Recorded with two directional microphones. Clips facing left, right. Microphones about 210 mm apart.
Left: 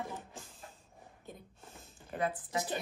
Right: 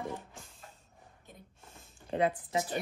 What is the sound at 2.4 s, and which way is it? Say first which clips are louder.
Speech: right 3 dB; 20° right (ahead or behind).